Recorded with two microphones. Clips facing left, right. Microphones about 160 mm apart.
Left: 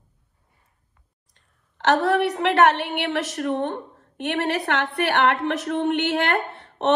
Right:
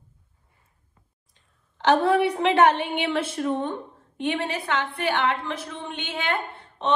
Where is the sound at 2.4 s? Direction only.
60° left (ahead or behind).